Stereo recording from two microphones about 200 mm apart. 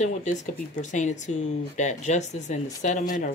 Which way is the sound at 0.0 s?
35° left (ahead or behind).